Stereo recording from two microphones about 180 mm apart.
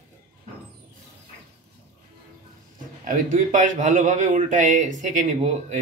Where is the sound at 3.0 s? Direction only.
45° right (ahead or behind).